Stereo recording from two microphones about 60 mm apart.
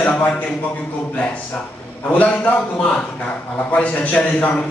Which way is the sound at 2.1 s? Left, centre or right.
Left.